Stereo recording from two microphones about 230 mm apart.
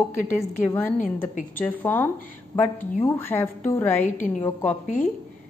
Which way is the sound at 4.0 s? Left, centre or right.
Left.